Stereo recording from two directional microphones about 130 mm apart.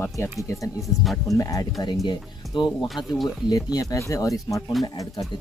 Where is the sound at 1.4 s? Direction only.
25° left (ahead or behind).